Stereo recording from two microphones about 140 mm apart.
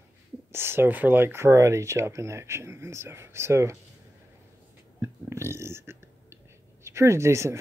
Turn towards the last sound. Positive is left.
turn(degrees=-20)  # may be behind; listen again after turning